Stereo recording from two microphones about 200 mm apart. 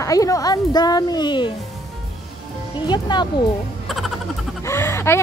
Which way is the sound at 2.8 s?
20° left (ahead or behind).